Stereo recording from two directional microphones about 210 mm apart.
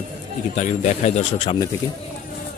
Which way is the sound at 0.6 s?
30° left (ahead or behind).